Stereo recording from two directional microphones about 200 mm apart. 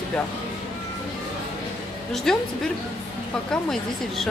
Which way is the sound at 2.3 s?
Centre (ahead or behind).